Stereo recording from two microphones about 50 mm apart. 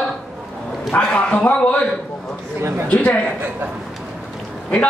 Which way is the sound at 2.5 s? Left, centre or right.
Right.